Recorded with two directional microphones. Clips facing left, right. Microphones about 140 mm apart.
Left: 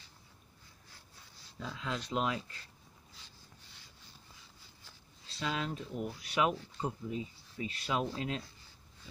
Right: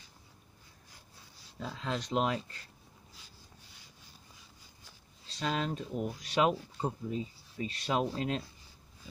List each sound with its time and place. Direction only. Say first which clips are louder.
1.6 s speech: right 3 dB; 35° right (ahead or behind)
5.4 s speech: right 3 dB; 40° right (ahead or behind)